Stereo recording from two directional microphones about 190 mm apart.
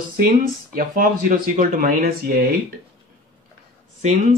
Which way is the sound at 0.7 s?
45° right (ahead or behind).